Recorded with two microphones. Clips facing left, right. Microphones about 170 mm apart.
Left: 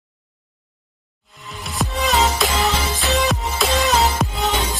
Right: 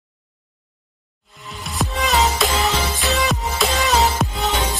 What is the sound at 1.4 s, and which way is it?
Music, centre (ahead or behind).